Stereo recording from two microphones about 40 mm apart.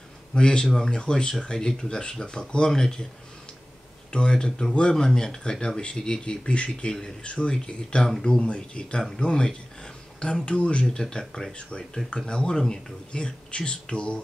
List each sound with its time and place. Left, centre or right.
0.3 s a man's voice: left
4.1 s speech: left
6.9 s speech: centre